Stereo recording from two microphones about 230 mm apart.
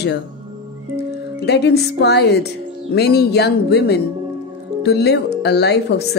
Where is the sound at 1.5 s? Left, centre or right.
Left.